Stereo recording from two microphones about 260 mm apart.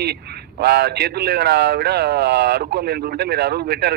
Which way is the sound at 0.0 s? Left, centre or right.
Right.